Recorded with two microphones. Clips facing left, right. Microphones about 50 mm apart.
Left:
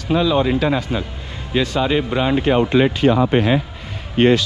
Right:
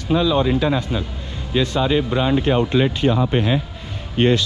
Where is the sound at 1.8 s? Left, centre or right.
Left.